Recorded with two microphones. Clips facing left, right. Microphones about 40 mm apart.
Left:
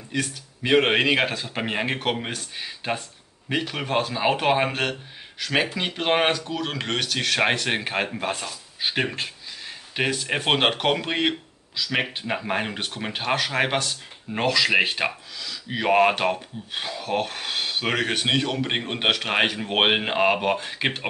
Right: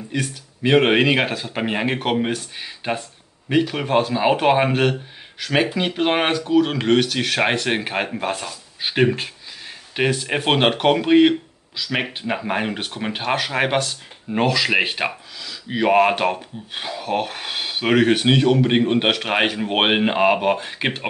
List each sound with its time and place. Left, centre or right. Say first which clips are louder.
0.1 s speech: right 1 dB; centre